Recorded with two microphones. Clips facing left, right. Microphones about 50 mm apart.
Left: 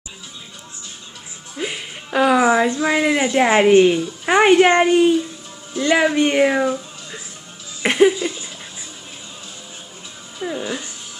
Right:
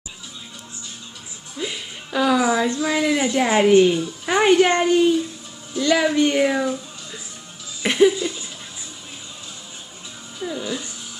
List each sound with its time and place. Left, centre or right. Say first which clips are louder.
1.6 s a woman's voice: left 2 dB; left
7.8 s a sound: left 2 dB; left
10.4 s a woman's voice: left 2 dB; left